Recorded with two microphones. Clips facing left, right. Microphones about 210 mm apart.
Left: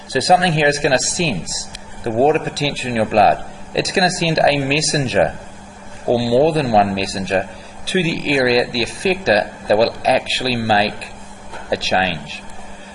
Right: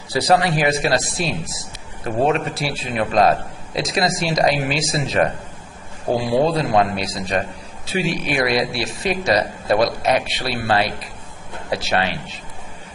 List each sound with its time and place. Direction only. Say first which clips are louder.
0.1 s a man's voice: left 2 dB; 25° left (ahead or behind)